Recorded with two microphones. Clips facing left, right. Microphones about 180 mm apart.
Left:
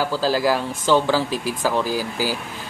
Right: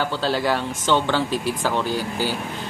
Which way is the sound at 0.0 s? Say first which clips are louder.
Left 2 dB; centre (ahead or behind).